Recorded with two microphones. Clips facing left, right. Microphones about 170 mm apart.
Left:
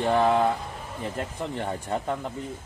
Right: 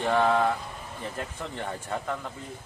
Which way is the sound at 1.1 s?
25° left (ahead or behind).